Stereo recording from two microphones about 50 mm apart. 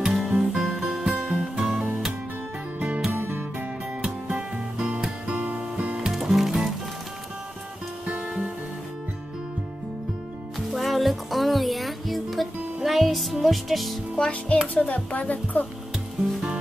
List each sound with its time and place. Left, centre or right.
0.0 s music: centre
1.1 s music: right
1.6 s music: centre
3.1 s music: right
4.0 s music: right
5.9 s music: centre
8.1 s music: right
10.7 s music: centre
14.1 s music: centre
14.7 s speech: left